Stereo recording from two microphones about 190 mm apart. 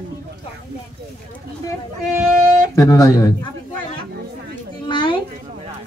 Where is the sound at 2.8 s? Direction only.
20° left (ahead or behind).